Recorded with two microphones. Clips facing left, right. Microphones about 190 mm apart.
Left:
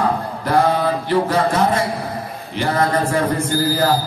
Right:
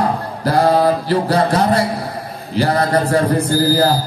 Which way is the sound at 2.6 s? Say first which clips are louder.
Right 3 dB; 35° right (ahead or behind).